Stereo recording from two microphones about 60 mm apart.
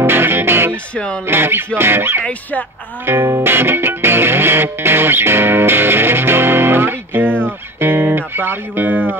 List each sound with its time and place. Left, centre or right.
0.0 s music: right
0.9 s speech: centre
1.2 s speech: right
3.1 s music: right
7.4 s speech: right